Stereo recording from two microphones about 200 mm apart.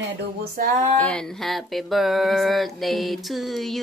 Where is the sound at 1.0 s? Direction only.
5° left (ahead or behind).